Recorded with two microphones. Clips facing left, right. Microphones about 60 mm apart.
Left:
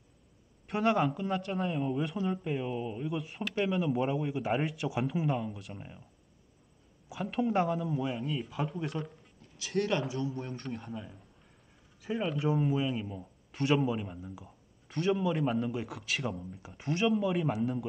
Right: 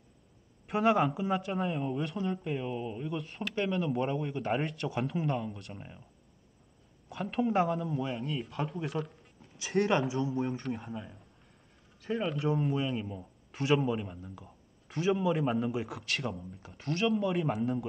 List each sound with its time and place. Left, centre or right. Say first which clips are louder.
0.7 s speech: right 1 dB; centre
7.1 s speech: even; centre
9.7 s speech: right 3 dB; centre
10.3 s speech: right 5 dB; centre
16.6 s speech: left 1 dB; centre
17.0 s speech: even; centre